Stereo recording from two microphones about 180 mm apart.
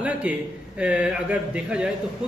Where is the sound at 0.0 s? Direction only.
5° right (ahead or behind).